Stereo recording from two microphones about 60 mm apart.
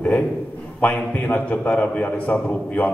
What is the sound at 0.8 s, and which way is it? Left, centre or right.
A man's voice, left.